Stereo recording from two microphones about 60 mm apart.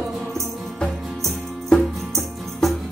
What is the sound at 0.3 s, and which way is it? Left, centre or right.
Music, centre.